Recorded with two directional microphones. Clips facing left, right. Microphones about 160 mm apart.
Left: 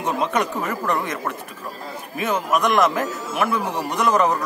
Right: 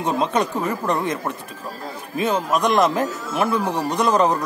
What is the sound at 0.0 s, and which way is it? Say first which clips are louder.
Speech: right 2 dB; 30° right (ahead or behind).